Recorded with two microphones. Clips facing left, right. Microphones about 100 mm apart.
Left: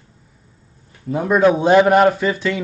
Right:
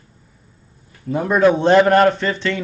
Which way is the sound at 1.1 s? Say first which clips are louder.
Even; centre (ahead or behind).